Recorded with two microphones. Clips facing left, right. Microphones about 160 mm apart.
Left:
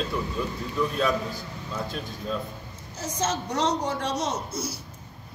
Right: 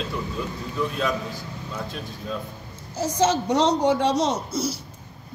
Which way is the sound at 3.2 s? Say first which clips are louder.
Right 6 dB; 75° right (ahead or behind).